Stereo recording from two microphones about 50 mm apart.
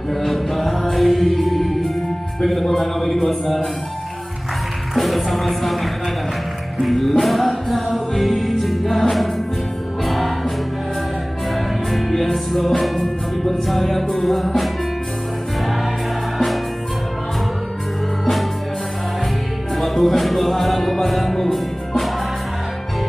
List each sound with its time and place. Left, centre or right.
0.1 s music: centre
2.4 s speech: centre
3.3 s music: centre
4.9 s music: centre
11.5 s music: centre
18.2 s music: centre
19.7 s music: centre